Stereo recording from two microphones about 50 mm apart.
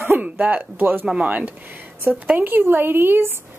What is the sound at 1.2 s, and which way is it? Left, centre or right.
Speech, right.